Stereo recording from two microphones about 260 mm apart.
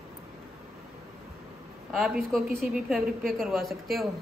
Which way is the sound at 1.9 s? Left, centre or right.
Centre.